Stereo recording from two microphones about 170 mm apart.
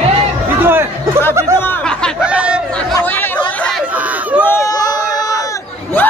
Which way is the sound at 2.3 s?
5° right (ahead or behind).